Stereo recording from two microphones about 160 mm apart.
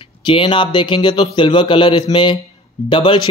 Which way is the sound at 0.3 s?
30° left (ahead or behind).